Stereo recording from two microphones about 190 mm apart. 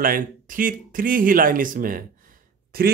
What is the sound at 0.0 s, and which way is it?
Speech, 45° right (ahead or behind).